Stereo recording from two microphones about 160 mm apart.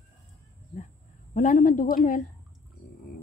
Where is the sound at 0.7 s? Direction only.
50° left (ahead or behind).